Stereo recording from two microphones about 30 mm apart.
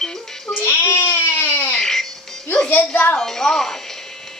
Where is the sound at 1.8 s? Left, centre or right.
Centre.